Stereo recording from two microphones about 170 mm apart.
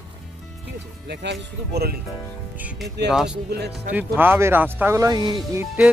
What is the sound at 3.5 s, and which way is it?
Speech, 75° right (ahead or behind).